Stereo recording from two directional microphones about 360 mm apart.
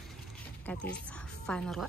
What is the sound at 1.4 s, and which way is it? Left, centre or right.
Speech, centre.